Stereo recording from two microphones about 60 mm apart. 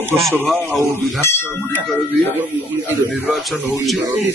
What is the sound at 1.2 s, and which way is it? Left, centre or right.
Speech, left.